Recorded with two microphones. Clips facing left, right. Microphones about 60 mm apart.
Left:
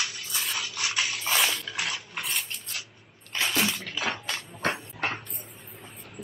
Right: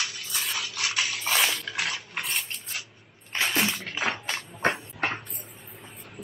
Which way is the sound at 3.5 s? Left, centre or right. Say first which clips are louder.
Even; centre.